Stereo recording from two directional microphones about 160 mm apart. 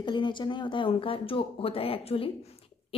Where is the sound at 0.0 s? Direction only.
30° left (ahead or behind).